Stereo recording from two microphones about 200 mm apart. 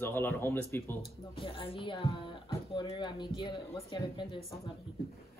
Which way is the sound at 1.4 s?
25° left (ahead or behind).